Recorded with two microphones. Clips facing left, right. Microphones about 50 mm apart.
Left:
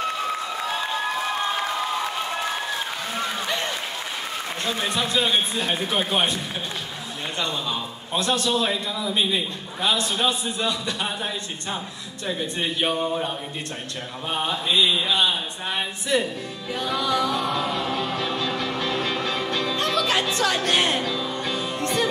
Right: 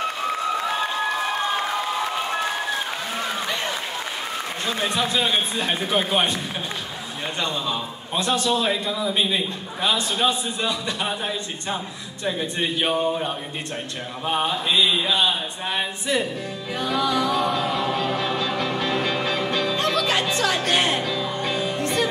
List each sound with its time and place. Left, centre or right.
4.9 s speech: centre
7.4 s a man's voice: centre
14.2 s mantra: centre
14.8 s speech: centre
16.7 s music: centre
21.4 s music: centre
21.8 s music: centre